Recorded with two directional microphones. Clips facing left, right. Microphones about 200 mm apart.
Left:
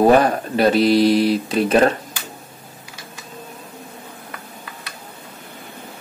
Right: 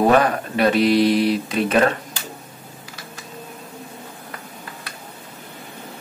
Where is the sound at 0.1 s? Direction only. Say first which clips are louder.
Left 2 dB; 35° left (ahead or behind).